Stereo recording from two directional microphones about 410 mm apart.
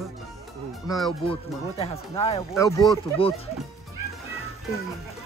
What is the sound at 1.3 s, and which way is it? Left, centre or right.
Speech, centre.